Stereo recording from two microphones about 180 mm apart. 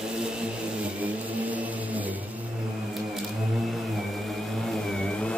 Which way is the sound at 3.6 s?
Centre (ahead or behind).